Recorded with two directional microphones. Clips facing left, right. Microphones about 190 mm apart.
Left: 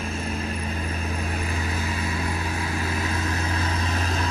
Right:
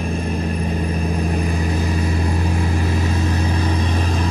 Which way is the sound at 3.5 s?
15° right (ahead or behind).